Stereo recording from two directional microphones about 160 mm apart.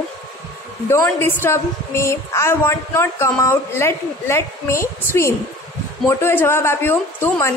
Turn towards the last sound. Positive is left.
turn(degrees=15)  # may be behind; listen again after turning